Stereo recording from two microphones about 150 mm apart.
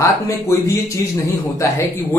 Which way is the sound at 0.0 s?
20° left (ahead or behind).